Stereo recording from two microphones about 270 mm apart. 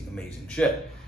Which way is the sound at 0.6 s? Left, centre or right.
Centre.